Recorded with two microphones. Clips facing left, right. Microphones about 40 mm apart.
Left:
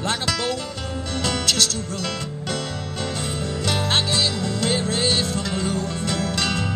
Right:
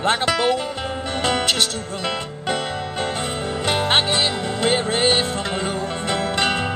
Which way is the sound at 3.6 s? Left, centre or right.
Right.